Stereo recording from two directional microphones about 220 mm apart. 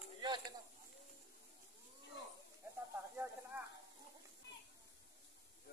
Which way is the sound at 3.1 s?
10° right (ahead or behind).